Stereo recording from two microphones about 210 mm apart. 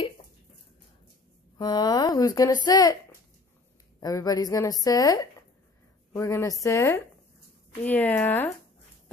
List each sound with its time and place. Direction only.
1.6 s a woman's voice: 20° left (ahead or behind)
4.0 s a woman's voice: 15° left (ahead or behind)